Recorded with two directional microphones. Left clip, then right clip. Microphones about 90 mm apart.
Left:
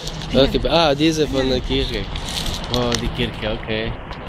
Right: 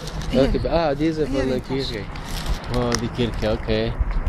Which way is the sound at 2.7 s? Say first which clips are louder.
Left 3 dB; 60° right (ahead or behind).